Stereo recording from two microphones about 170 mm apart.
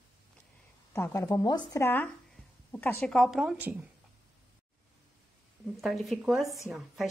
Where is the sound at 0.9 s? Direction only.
15° left (ahead or behind).